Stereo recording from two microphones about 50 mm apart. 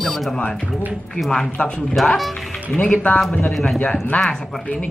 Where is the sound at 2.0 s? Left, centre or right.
Centre.